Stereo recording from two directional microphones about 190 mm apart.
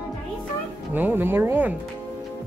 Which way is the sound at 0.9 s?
10° right (ahead or behind).